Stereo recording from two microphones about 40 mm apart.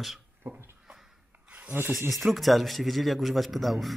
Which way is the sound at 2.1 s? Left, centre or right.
Centre.